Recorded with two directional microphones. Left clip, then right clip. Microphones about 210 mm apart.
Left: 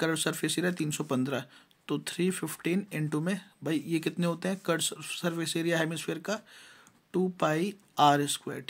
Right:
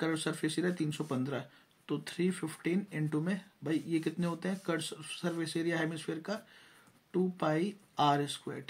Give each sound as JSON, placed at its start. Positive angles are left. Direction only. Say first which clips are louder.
{"t": 0.0, "sound": "speech", "louder": "left 4 dB", "side_deg": 40}